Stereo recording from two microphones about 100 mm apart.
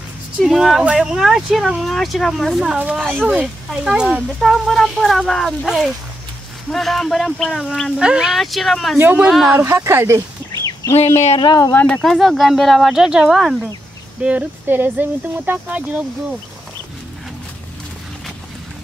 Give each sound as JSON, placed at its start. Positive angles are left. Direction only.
{"t": 0.4, "sound": "speech", "side_deg": 0}
{"t": 8.9, "sound": "speech", "side_deg": -20}
{"t": 9.3, "sound": "speech", "side_deg": 0}
{"t": 9.6, "sound": "speech", "side_deg": -25}
{"t": 11.3, "sound": "speech", "side_deg": 50}
{"t": 11.7, "sound": "speech", "side_deg": 15}
{"t": 12.0, "sound": "speech", "side_deg": 5}
{"t": 14.2, "sound": "speech", "side_deg": -15}